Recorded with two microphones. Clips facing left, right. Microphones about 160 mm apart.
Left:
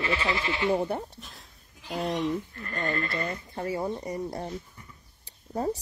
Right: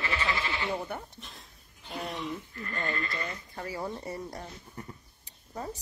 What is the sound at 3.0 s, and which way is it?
Speech, 55° left (ahead or behind).